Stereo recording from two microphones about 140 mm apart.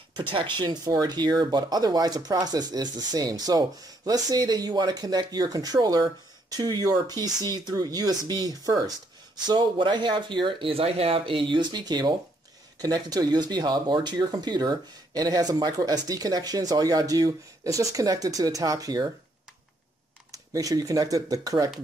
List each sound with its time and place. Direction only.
0.3 s speech: 35° right (ahead or behind)
20.2 s speech: 25° right (ahead or behind)